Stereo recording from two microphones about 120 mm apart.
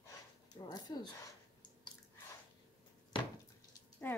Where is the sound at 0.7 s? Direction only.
35° left (ahead or behind).